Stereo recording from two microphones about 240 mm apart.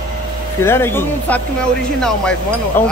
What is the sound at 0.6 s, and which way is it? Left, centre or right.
Speech, centre.